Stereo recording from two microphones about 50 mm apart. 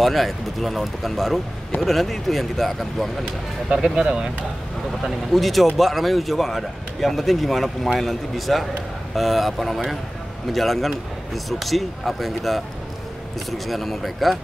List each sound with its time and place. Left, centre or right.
0.0 s speech: centre
3.7 s speech: centre
5.3 s speech: centre